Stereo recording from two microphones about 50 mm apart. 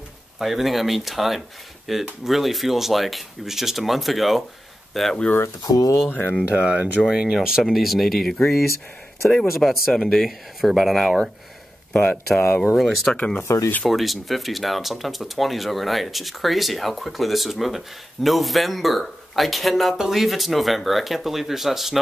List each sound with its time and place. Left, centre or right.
0.4 s speech: centre
6.0 s speech: left
6.5 s speech: centre
11.9 s speech: left
12.4 s speech: left
12.7 s speech: centre
13.1 s speech: left
13.8 s speech: centre